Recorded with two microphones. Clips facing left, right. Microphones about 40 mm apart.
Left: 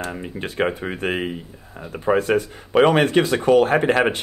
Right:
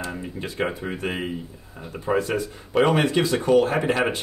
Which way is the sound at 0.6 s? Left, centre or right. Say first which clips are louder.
Left 5 dB; left.